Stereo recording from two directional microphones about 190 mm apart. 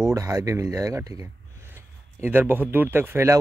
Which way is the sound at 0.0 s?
15° right (ahead or behind).